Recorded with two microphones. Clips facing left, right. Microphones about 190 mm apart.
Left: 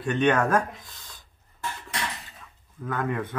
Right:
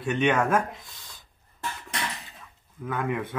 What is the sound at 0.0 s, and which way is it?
Speech, 10° right (ahead or behind).